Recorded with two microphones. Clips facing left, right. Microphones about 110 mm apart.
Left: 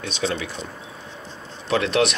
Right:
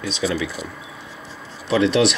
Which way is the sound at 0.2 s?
45° left (ahead or behind).